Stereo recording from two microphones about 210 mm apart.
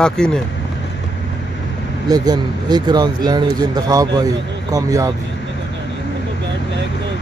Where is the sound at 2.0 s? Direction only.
20° right (ahead or behind).